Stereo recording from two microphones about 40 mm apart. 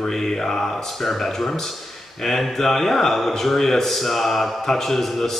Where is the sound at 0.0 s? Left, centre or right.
Centre.